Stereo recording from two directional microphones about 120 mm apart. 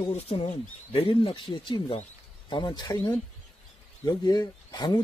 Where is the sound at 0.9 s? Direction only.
50° left (ahead or behind).